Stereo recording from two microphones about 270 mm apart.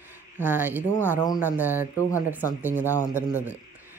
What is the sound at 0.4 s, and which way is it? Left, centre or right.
Speech, centre.